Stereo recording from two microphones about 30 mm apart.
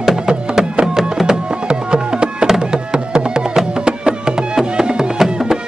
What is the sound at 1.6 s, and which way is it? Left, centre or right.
Music, right.